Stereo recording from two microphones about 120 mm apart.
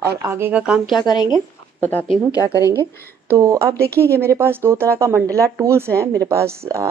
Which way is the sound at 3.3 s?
25° right (ahead or behind).